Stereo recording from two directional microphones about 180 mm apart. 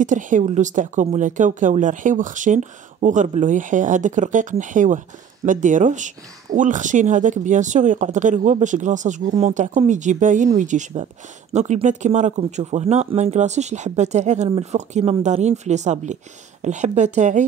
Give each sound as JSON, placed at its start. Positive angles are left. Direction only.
{"t": 0.0, "sound": "speech", "side_deg": -45}